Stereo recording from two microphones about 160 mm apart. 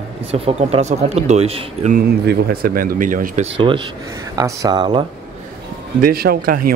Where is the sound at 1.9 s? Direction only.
70° right (ahead or behind).